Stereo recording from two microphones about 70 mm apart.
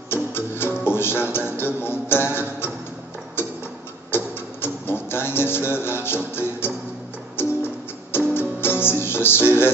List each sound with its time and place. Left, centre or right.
0.1 s music: left
4.1 s music: left